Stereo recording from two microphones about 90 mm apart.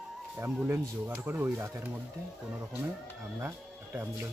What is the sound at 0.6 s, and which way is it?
Speech, 25° right (ahead or behind).